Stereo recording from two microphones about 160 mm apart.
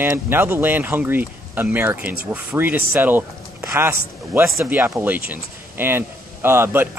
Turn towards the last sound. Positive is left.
turn(degrees=-15)  # may be behind; listen again after turning